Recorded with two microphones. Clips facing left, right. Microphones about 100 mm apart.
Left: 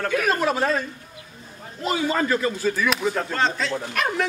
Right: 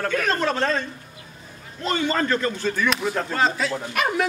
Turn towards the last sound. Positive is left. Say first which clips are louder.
# right 1 dB
turn(degrees=-5)  # may be behind; listen again after turning